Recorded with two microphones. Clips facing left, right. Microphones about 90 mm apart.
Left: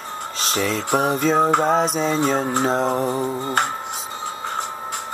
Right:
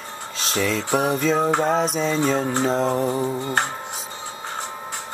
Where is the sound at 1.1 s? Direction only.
Centre (ahead or behind).